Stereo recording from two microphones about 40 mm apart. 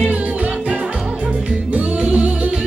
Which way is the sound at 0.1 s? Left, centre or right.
Right.